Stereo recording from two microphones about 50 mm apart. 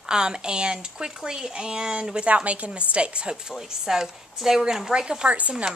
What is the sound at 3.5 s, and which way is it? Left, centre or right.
A woman's voice, centre.